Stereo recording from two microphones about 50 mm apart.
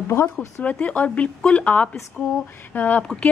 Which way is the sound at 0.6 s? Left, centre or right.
Left.